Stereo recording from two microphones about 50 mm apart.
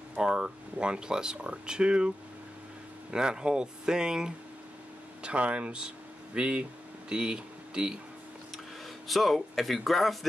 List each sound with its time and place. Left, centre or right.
0.1 s speech: centre
9.0 s speech: centre